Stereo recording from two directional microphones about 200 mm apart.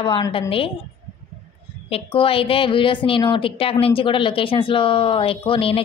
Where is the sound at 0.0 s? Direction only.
25° left (ahead or behind).